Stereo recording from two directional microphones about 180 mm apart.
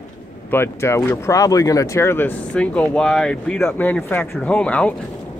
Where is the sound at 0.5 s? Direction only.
15° left (ahead or behind).